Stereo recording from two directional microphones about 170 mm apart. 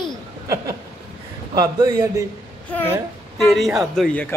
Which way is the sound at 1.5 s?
20° right (ahead or behind).